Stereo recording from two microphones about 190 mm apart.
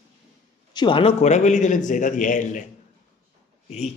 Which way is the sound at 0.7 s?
25° left (ahead or behind).